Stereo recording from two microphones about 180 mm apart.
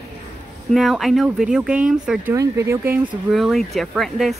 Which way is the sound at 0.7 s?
Centre (ahead or behind).